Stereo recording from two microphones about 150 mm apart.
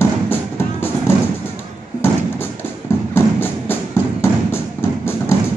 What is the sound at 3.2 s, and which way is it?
Music, 15° left (ahead or behind).